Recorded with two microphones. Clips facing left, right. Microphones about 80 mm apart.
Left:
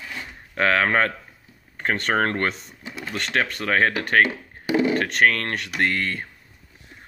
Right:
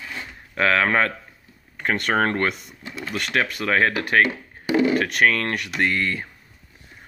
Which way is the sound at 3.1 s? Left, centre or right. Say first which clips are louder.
Right 1 dB; centre.